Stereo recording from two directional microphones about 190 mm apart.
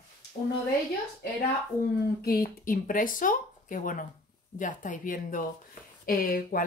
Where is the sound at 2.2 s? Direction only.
45° left (ahead or behind).